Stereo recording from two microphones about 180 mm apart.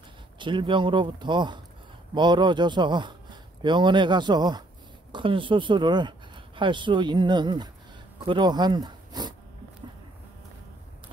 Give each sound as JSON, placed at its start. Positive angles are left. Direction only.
{"t": 0.4, "sound": "speech", "side_deg": -25}